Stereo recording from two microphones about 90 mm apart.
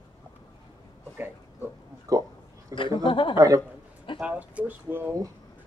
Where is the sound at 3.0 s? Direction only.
65° left (ahead or behind).